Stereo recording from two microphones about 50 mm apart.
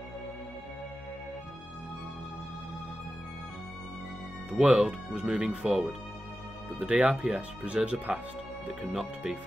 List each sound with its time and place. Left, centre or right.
4.5 s speech: right; by 5.9 s centre
6.8 s speech: right